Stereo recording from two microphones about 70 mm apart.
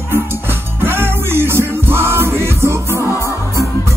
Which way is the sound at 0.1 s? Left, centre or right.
Right.